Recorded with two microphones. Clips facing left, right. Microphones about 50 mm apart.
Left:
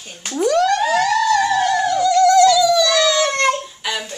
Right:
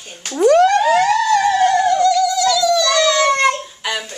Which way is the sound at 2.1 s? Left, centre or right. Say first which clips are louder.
Left 5 dB; left.